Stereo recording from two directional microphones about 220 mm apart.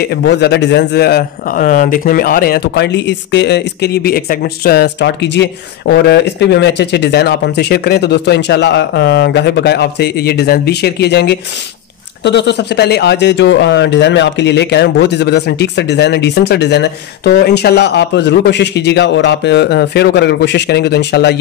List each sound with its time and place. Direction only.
0.0 s speech: 50° left (ahead or behind)